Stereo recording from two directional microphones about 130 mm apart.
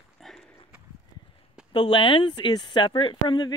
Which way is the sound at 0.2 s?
Centre (ahead or behind).